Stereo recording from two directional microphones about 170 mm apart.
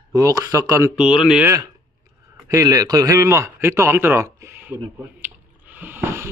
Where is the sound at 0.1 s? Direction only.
20° right (ahead or behind).